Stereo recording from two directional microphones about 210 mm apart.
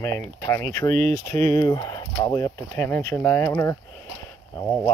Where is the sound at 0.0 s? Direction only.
10° left (ahead or behind).